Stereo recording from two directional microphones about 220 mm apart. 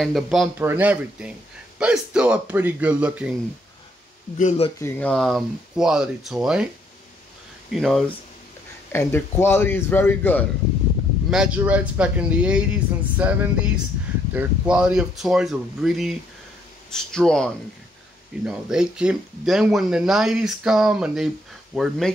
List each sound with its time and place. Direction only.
0.0 s speech: centre (ahead or behind)
4.4 s speech: 30° left (ahead or behind)
4.7 s speech: 10° left (ahead or behind)
7.7 s speech: centre (ahead or behind)
8.9 s a man's voice: 10° left (ahead or behind)
11.2 s speech: 5° right (ahead or behind)